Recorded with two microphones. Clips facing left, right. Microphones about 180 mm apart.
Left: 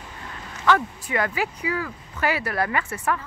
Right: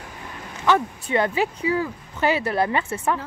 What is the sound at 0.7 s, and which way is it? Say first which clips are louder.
Speech: right 1 dB; 25° right (ahead or behind).